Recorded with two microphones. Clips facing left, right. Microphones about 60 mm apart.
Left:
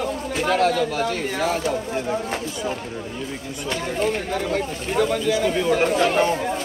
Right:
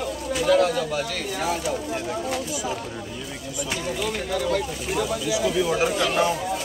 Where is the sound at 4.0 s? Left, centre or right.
Left.